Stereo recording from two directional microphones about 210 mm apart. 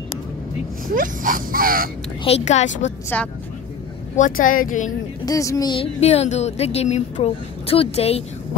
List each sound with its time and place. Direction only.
0.9 s a sound: 40° right (ahead or behind)
2.2 s speech: 30° left (ahead or behind)
3.1 s speech: 5° left (ahead or behind)
4.2 s speech: 40° left (ahead or behind)
5.2 s speech: 15° left (ahead or behind)